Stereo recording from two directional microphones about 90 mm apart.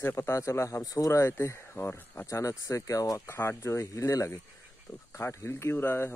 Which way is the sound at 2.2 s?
35° left (ahead or behind).